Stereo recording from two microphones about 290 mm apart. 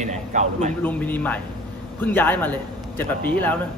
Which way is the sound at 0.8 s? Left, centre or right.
Centre.